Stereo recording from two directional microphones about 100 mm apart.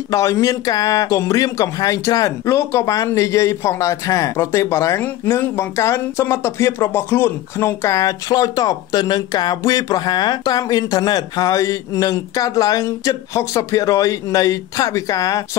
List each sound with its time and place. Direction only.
0.1 s speech: 30° left (ahead or behind)